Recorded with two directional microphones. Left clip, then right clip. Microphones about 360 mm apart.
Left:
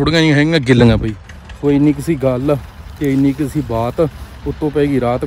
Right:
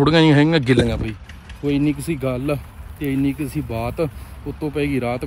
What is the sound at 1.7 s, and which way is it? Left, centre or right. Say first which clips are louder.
Speech: left 7 dB; left.